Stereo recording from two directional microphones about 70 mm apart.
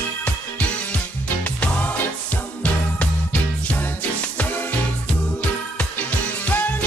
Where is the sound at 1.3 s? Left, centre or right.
Left.